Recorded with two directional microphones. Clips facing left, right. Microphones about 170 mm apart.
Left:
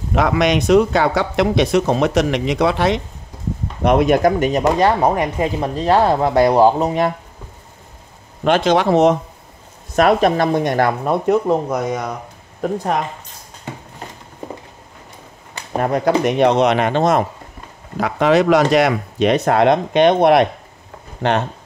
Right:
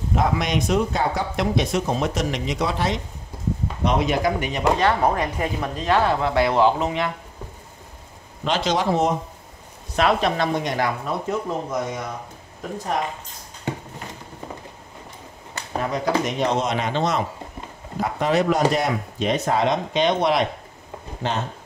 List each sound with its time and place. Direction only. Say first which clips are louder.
0.1 s speech: left 6 dB; 75° left (ahead or behind)
3.8 s speech: left 8 dB; 55° left (ahead or behind)
5.0 s speech: left 5 dB; 20° left (ahead or behind); by 7.1 s 40° left (ahead or behind)
8.5 s speech: left 7 dB; 55° left (ahead or behind); by 9.1 s 70° left (ahead or behind)
9.9 s speech: left 6 dB; 45° left (ahead or behind); by 12.1 s 70° left (ahead or behind)
15.8 s speech: left 7 dB; 60° left (ahead or behind)
18.0 s speech: left 6 dB; 90° left; by 21.5 s 65° left (ahead or behind)